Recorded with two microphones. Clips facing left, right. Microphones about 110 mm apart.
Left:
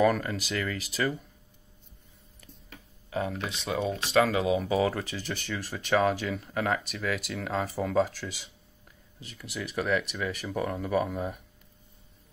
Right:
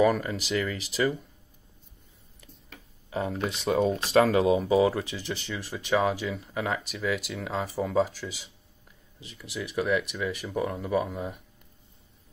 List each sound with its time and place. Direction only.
0.0 s speech: 10° right (ahead or behind)
3.1 s speech: 25° right (ahead or behind)
3.3 s speech: 40° right (ahead or behind)
4.6 s speech: 25° right (ahead or behind)
5.5 s speech: 10° right (ahead or behind)